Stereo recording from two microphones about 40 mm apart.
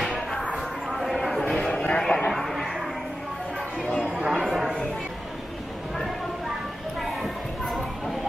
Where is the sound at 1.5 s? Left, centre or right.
Left.